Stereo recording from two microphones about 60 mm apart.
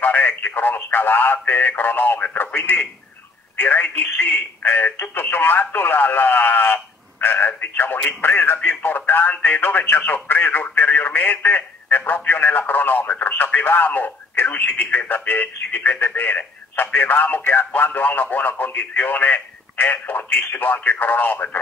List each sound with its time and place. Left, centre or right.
0.0 s speech: left